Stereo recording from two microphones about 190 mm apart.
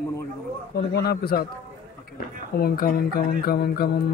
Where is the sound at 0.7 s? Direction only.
60° left (ahead or behind).